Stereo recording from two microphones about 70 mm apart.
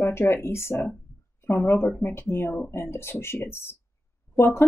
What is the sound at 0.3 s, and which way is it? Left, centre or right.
Speech, left.